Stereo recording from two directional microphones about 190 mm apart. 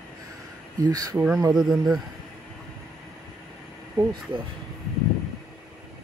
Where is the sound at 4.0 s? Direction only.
25° right (ahead or behind).